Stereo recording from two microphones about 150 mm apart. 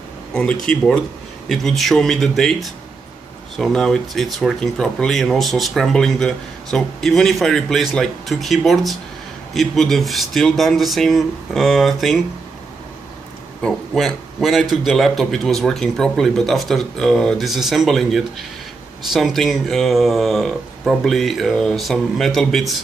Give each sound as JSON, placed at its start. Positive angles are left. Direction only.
{"t": 0.3, "sound": "speech", "side_deg": 5}
{"t": 13.6, "sound": "a man's voice", "side_deg": 5}